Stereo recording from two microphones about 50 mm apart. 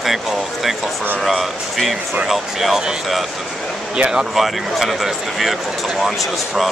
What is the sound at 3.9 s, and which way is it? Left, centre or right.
Speech, right.